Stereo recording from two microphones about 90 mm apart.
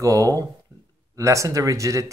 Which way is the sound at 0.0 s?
35° right (ahead or behind).